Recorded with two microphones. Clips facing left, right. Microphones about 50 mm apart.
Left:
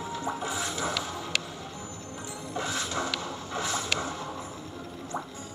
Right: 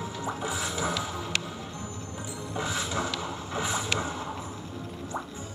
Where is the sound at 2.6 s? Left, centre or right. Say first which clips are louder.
Right 1 dB; centre.